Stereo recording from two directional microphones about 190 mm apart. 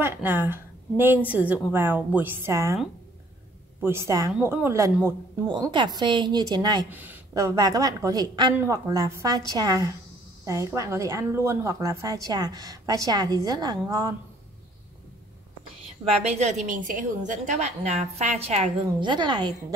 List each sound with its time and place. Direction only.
0.0 s a woman's voice: 10° right (ahead or behind)
3.8 s a woman's voice: 15° right (ahead or behind)
6.9 s speech: 10° right (ahead or behind)
16.3 s a woman's voice: 35° right (ahead or behind)